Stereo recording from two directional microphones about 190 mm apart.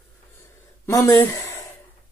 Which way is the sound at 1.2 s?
15° left (ahead or behind).